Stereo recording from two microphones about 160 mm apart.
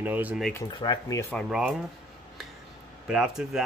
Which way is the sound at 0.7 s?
25° left (ahead or behind).